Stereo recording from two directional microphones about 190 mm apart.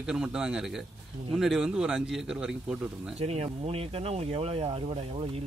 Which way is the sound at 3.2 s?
35° right (ahead or behind).